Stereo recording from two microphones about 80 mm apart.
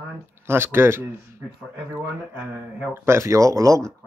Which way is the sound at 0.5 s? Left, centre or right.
Right.